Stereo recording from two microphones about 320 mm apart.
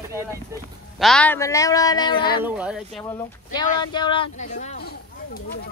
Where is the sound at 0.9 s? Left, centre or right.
Centre.